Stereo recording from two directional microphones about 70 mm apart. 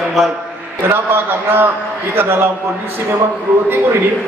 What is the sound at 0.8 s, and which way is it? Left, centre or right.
A man's voice, right.